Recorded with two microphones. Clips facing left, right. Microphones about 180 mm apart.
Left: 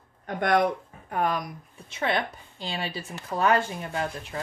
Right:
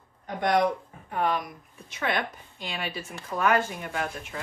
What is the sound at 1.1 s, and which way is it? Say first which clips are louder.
Speech: even; 45° left (ahead or behind).